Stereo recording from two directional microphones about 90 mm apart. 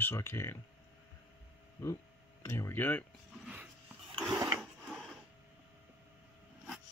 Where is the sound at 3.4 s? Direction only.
20° right (ahead or behind).